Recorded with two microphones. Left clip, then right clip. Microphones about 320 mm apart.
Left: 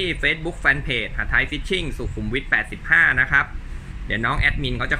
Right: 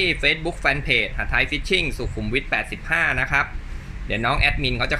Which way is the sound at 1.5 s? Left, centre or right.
Left.